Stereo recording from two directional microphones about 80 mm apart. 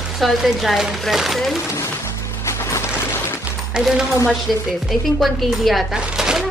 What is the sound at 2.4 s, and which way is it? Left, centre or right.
Music, left.